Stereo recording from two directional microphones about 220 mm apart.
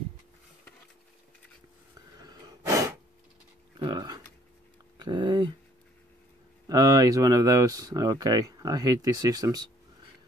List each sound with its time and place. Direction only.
2.2 s a sound: 15° right (ahead or behind)
3.7 s speech: 20° right (ahead or behind)
6.7 s speech: 15° right (ahead or behind)